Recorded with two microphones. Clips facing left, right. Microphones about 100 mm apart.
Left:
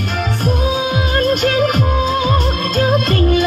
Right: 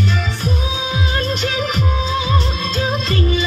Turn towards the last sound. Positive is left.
turn(degrees=50)  # may be behind; listen again after turning